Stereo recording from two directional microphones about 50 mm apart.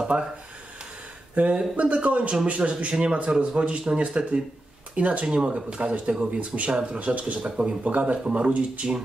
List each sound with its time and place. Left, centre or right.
0.1 s speech: right
1.3 s speech: right